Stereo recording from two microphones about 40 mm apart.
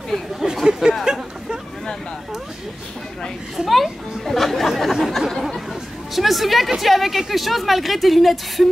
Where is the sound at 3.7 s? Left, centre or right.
Centre.